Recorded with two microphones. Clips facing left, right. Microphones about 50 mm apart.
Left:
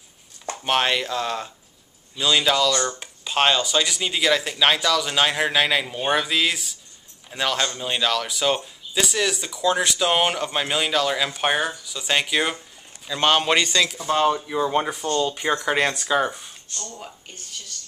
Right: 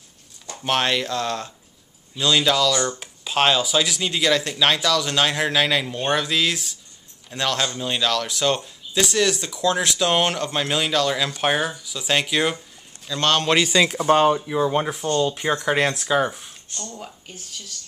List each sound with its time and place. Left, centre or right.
0.6 s speech: centre
12.5 s a man's voice: centre
13.8 s speech: right
14.2 s speech: centre